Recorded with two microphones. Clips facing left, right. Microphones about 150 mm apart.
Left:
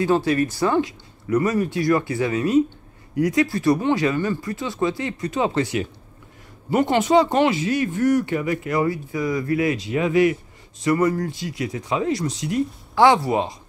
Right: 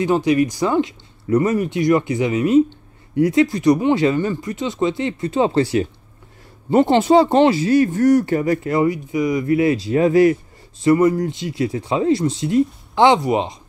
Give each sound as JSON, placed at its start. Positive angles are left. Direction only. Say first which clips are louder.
{"t": 0.0, "sound": "speech", "louder": "right 3 dB", "side_deg": -15}
{"t": 8.7, "sound": "speech", "louder": "right 2 dB", "side_deg": -20}
{"t": 10.8, "sound": "speech", "louder": "right 5 dB", "side_deg": -25}